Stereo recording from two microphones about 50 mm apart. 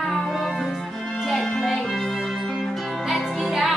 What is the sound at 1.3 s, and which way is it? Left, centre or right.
Music, centre.